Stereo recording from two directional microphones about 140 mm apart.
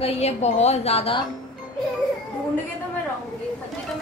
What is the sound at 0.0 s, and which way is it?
A woman's voice, 50° left (ahead or behind).